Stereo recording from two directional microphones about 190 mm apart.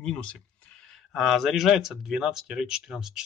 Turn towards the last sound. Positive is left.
turn(degrees=0)  # may be behind; listen again after turning